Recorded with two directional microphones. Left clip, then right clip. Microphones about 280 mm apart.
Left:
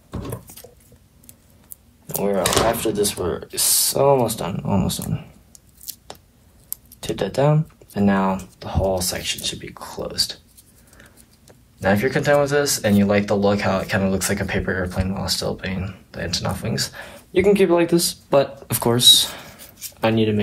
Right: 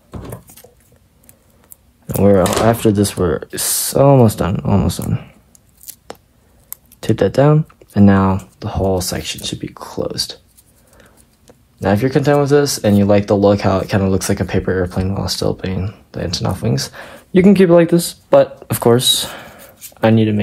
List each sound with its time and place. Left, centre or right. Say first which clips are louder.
2.7 s speech: right 6 dB; right
7.0 s speech: right 7 dB; right
17.1 s speech: right 4 dB; right